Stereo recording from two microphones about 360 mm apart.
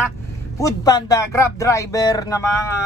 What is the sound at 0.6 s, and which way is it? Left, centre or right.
Speech, centre.